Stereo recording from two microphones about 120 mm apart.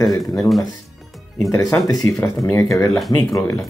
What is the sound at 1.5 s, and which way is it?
Speech, 25° left (ahead or behind).